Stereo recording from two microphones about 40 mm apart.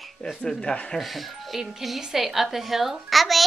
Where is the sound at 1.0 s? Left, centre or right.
Centre.